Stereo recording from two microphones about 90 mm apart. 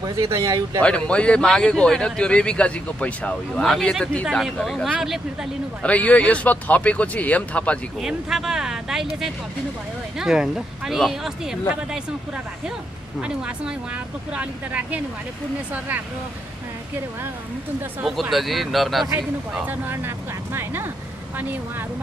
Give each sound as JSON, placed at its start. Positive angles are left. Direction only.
{"t": 0.0, "sound": "speech", "side_deg": -40}
{"t": 0.8, "sound": "a man's voice", "side_deg": 10}
{"t": 5.0, "sound": "speech", "side_deg": -5}
{"t": 5.8, "sound": "a man's voice", "side_deg": 15}
{"t": 8.0, "sound": "speech", "side_deg": -5}
{"t": 14.3, "sound": "speech", "side_deg": -15}
{"t": 18.3, "sound": "speech", "side_deg": 0}
{"t": 19.1, "sound": "speech", "side_deg": -20}